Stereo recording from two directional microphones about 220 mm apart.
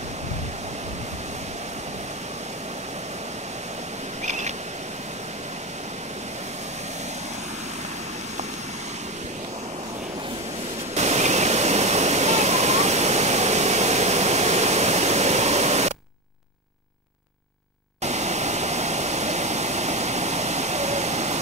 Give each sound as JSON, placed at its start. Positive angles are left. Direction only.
{"t": 4.3, "sound": "a sound", "side_deg": -30}
{"t": 11.0, "sound": "waterfall", "side_deg": -30}
{"t": 18.0, "sound": "waterfall", "side_deg": -30}